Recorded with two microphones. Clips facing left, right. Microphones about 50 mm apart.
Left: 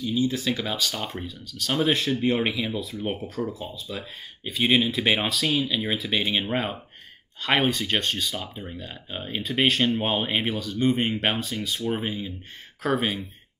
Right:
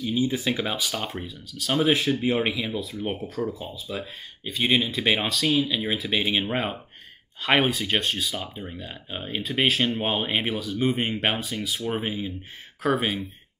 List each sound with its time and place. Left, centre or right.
0.0 s speech: right; by 13.2 s centre